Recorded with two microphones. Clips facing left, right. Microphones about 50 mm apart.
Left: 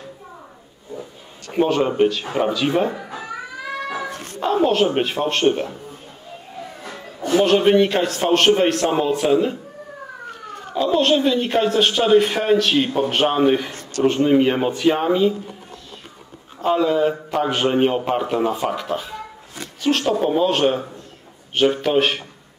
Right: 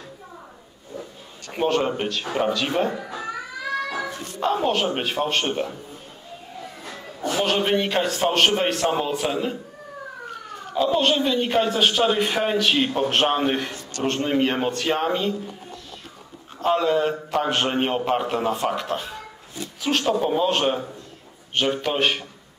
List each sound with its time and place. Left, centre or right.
1.5 s speech: centre
4.1 s cat: left
4.4 s speech: centre
6.9 s music: left
7.4 s speech: centre
10.7 s speech: centre
16.5 s a man's voice: centre